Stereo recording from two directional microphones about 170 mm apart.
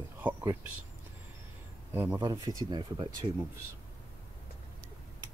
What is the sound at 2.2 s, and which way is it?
Speech, 25° right (ahead or behind).